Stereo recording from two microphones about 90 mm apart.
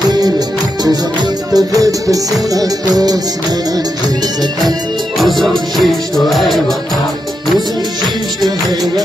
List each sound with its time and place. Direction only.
0.8 s music: 45° right (ahead or behind)
5.1 s music: centre (ahead or behind)
8.0 s music: centre (ahead or behind)